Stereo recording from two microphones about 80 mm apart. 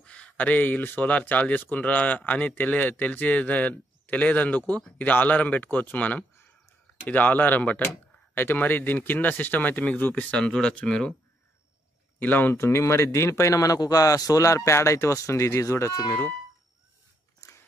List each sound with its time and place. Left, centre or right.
0.0 s speech: centre
12.2 s speech: left
17.4 s biting: left